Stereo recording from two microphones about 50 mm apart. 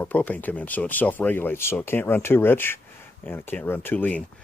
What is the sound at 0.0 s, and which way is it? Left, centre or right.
Speech, left.